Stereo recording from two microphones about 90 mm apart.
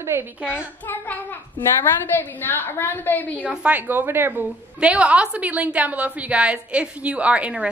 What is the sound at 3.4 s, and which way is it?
Speech, 15° right (ahead or behind).